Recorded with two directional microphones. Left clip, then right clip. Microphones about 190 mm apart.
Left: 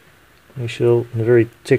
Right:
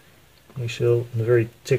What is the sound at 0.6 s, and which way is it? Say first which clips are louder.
Speech: left 5 dB; 35° left (ahead or behind).